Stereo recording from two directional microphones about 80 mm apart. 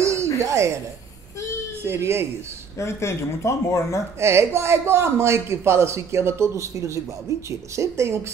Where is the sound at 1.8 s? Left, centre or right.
Right.